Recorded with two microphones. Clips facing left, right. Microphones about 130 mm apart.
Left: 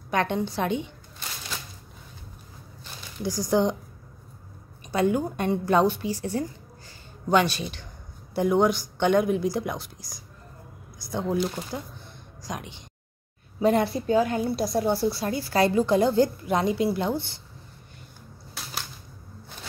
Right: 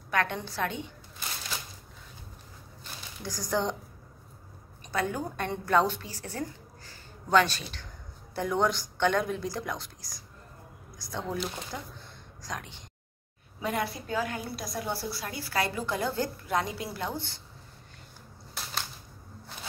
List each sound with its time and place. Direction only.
0.1 s a woman's voice: 20° left (ahead or behind)
3.3 s speech: 15° left (ahead or behind)
4.9 s speech: 20° left (ahead or behind)
11.1 s a woman's voice: 15° left (ahead or behind)
13.6 s a woman's voice: 30° left (ahead or behind)